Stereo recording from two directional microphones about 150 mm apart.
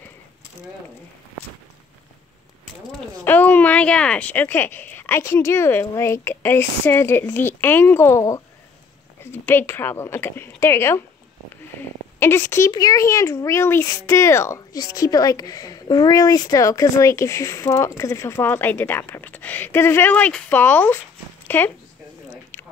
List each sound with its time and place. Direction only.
3.3 s speech: 10° left (ahead or behind)
12.2 s a child's voice: 15° left (ahead or behind)